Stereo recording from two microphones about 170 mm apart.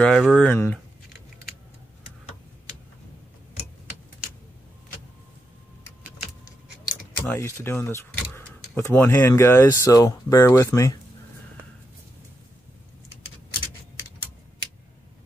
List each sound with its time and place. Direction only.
0.0 s speech: 5° left (ahead or behind)
7.0 s speech: 10° left (ahead or behind)